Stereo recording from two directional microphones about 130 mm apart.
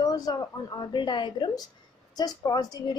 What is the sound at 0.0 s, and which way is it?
A woman's voice, 30° left (ahead or behind).